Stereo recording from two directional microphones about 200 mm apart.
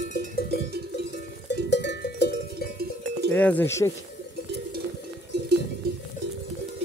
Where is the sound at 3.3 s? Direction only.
10° left (ahead or behind).